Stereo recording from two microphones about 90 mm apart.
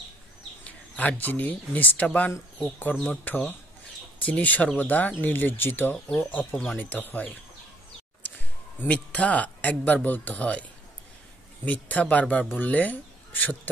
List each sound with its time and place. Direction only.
0.7 s speech: 15° left (ahead or behind)
6.5 s speech: centre (ahead or behind)
6.8 s speech: 20° left (ahead or behind)
8.2 s a sound: 15° left (ahead or behind)
8.8 s speech: 15° left (ahead or behind)
11.6 s speech: 15° left (ahead or behind)